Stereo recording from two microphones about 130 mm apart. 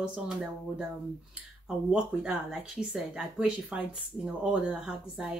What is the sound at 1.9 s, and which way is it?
Speech, 5° right (ahead or behind).